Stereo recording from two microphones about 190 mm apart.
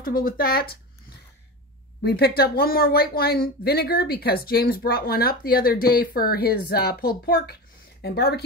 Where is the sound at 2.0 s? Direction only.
55° left (ahead or behind).